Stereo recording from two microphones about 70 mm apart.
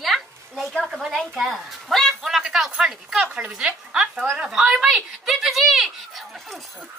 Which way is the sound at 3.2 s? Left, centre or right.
Right.